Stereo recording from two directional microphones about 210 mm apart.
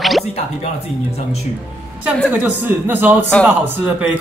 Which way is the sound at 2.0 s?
5° right (ahead or behind).